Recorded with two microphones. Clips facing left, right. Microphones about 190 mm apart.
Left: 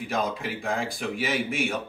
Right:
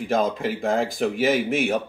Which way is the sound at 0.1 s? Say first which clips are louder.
Right 7 dB; 45° right (ahead or behind).